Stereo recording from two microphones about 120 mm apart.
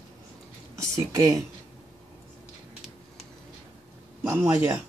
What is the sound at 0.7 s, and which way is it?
Speech, 25° right (ahead or behind).